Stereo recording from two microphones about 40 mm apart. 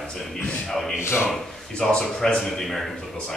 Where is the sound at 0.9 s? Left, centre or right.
Left.